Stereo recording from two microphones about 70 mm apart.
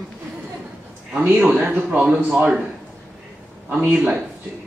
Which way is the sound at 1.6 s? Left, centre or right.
Right.